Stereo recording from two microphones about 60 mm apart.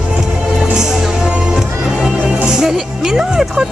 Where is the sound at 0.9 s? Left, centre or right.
Centre.